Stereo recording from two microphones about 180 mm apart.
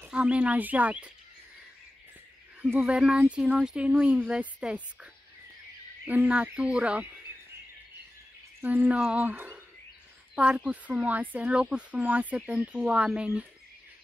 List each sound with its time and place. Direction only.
0.0 s speech: 5° right (ahead or behind)
2.6 s speech: 5° right (ahead or behind)
8.5 s speech: 10° right (ahead or behind)